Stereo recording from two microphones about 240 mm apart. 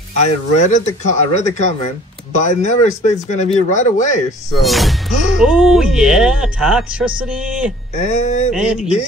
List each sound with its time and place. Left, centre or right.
0.1 s speech: left
4.6 s speech: centre
7.9 s speech: left
8.5 s speech: centre